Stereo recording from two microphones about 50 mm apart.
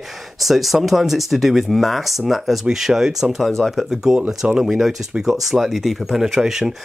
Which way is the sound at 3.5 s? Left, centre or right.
Centre.